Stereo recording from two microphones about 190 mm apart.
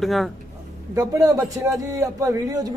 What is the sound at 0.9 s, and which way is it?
A man's voice, 20° right (ahead or behind).